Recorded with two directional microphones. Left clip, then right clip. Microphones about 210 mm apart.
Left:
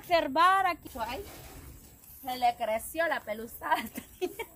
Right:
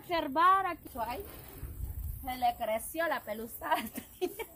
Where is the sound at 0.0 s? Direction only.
50° left (ahead or behind).